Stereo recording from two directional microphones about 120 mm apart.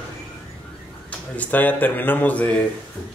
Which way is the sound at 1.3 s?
15° left (ahead or behind).